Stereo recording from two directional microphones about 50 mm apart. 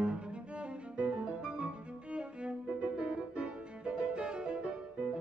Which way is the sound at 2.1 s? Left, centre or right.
Right.